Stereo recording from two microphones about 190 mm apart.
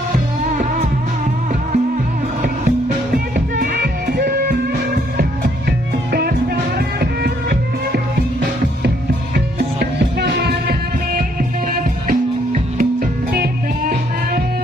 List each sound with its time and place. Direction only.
0.5 s music: 40° right (ahead or behind)
3.3 s music: 50° right (ahead or behind)